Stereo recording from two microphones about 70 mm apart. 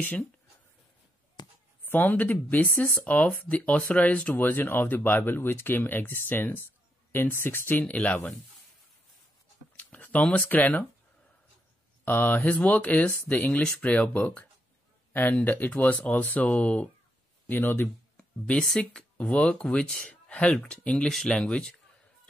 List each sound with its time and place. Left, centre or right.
1.4 s a sound: left
1.9 s speech: left
9.8 s a sound: left
10.2 s speech: left
12.0 s speech: left
18.1 s speech: centre